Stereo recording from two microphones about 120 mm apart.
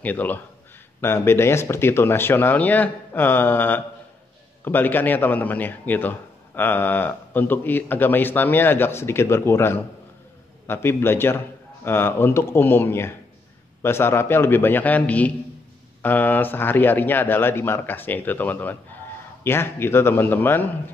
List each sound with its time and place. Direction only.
0.0 s a man's voice: 15° left (ahead or behind)